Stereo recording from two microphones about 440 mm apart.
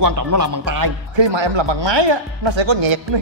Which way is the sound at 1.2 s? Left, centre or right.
Right.